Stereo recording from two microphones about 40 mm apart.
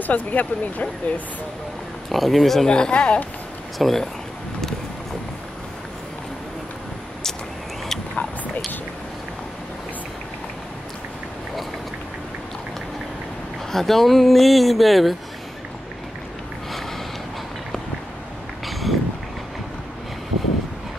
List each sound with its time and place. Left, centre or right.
0.0 s speech: left
2.0 s speech: centre
2.7 s speech: left
3.7 s speech: centre
13.7 s speech: centre
18.7 s a sound: centre